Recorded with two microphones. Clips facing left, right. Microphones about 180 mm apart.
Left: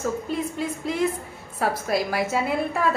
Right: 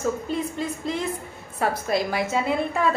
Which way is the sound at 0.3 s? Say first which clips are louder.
Even; 5° left (ahead or behind).